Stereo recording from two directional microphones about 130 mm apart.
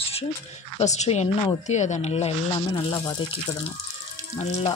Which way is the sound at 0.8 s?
60° left (ahead or behind).